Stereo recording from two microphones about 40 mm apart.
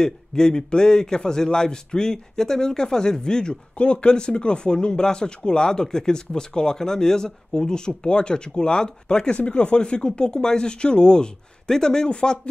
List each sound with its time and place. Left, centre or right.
0.0 s a man's voice: centre
3.7 s speech: left